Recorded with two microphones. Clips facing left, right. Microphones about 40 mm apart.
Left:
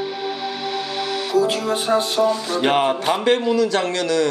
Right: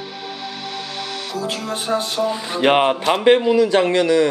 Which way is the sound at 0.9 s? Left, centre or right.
Centre.